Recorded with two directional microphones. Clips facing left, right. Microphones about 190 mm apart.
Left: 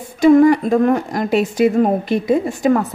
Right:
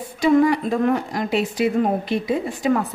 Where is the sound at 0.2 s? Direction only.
50° left (ahead or behind).